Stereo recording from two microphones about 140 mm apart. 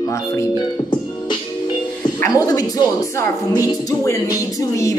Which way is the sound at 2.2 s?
25° left (ahead or behind).